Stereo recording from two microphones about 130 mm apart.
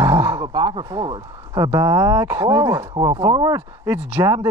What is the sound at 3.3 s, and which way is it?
Speech, 30° right (ahead or behind).